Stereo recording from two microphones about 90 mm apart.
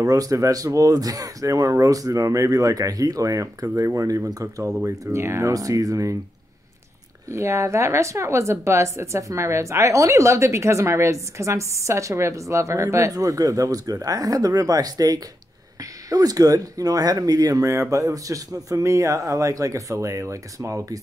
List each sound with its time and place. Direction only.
0.0 s speech: 40° right (ahead or behind)
7.2 s speech: 35° right (ahead or behind)